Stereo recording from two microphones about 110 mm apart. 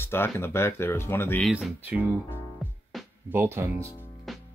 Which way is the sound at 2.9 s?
Centre (ahead or behind).